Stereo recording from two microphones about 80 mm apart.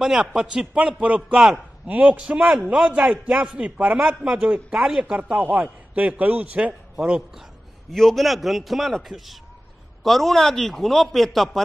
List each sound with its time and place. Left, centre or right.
0.0 s a man's voice: centre
1.9 s a man's voice: centre
7.0 s a man's voice: centre